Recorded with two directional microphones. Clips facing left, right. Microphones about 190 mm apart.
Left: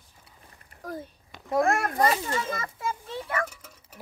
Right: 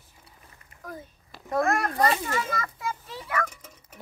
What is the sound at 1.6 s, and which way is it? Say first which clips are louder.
A child's voice: left 1 dB; 25° left (ahead or behind).